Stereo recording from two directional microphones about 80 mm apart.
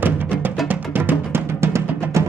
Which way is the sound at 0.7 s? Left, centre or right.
Right.